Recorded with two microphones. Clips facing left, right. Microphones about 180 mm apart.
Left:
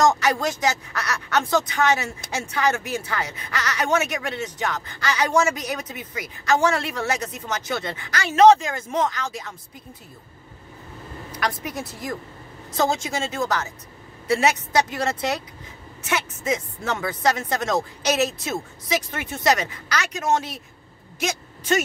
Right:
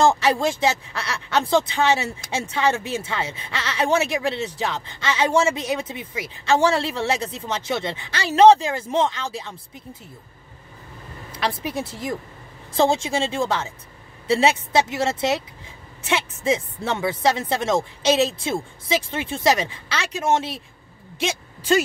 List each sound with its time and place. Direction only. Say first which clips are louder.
0.0 s speech: right 2 dB; 30° right (ahead or behind)
11.3 s a woman's voice: right 2 dB; 25° right (ahead or behind)